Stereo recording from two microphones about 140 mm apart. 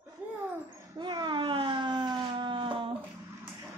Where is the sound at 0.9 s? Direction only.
30° right (ahead or behind).